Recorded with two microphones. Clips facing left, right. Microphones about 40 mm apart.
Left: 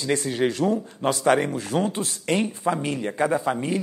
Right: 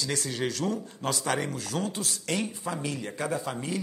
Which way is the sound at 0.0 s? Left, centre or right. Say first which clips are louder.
Left 7 dB; left.